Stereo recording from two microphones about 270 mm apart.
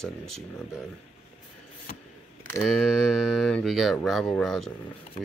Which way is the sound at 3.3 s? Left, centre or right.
Centre.